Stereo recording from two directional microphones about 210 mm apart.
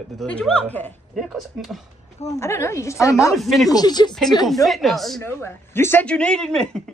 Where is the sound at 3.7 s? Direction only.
20° left (ahead or behind).